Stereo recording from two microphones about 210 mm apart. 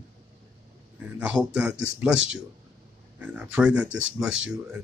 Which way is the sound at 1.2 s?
5° right (ahead or behind).